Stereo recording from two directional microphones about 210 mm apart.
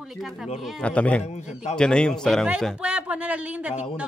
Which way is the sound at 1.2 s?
30° left (ahead or behind).